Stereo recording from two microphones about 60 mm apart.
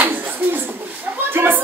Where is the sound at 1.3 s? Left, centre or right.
Right.